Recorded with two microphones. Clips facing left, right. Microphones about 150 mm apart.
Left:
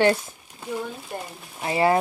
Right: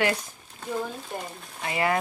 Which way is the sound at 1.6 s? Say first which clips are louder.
Left 5 dB; 30° left (ahead or behind).